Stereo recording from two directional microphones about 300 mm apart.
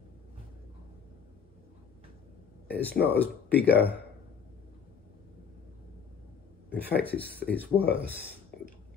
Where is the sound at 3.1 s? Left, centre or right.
Centre.